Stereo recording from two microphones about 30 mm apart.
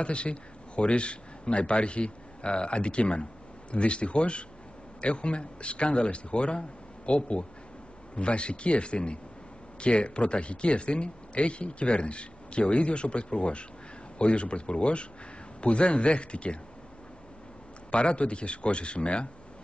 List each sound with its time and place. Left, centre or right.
0.0 s a man's voice: left
17.9 s speech: left